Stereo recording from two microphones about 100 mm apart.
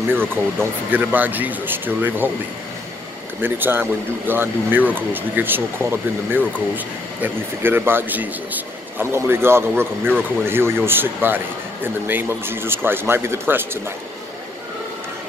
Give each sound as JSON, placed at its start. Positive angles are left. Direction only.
{"t": 0.1, "sound": "speech", "side_deg": -20}
{"t": 3.3, "sound": "speech", "side_deg": -20}